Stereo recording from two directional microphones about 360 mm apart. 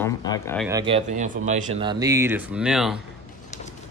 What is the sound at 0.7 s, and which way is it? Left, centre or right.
Speech, centre.